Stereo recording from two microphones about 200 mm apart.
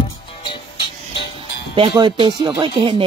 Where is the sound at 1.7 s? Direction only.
25° right (ahead or behind).